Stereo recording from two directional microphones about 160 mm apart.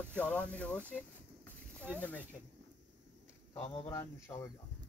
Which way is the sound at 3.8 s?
20° left (ahead or behind).